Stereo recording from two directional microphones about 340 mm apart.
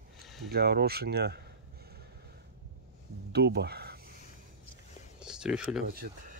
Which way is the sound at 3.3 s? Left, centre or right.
Right.